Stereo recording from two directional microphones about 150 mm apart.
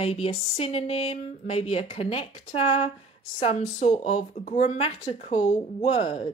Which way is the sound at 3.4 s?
40° left (ahead or behind).